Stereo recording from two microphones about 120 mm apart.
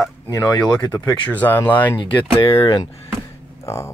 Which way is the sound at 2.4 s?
50° left (ahead or behind).